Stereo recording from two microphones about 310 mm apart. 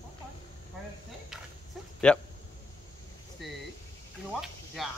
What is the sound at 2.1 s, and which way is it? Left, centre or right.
Speech, centre.